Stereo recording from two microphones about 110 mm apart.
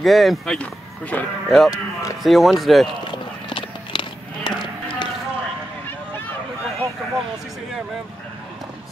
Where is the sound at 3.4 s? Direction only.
50° left (ahead or behind).